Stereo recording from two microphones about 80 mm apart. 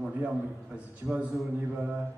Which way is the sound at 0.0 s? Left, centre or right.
Centre.